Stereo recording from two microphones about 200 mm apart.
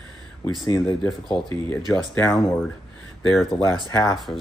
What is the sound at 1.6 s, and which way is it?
Speech, 15° left (ahead or behind).